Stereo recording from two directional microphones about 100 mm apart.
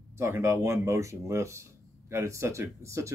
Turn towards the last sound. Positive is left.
turn(degrees=-30)  # may be behind; listen again after turning